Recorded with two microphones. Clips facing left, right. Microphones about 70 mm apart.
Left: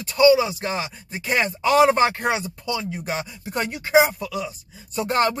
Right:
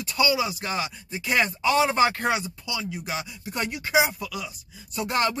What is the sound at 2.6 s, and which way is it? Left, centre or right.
Speech, left.